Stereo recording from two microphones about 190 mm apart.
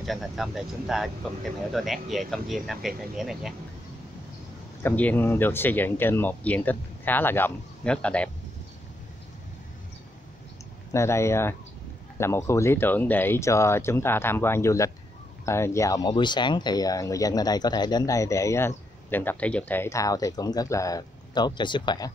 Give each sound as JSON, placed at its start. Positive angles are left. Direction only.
{"t": 0.0, "sound": "speech", "side_deg": 0}
{"t": 4.8, "sound": "speech", "side_deg": 10}
{"t": 10.9, "sound": "speech", "side_deg": 15}